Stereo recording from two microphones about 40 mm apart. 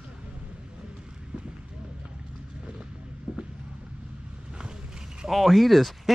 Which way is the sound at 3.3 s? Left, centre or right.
Right.